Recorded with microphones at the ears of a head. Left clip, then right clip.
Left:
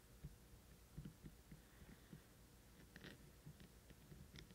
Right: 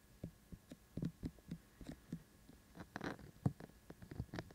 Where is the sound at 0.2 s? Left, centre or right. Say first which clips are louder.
Right 13 dB; right.